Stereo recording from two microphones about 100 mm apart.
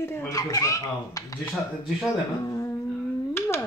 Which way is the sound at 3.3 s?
25° left (ahead or behind).